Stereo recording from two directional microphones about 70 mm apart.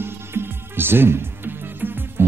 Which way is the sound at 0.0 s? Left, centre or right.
Right.